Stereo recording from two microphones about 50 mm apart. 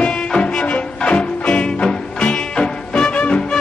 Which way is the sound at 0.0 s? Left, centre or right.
Left.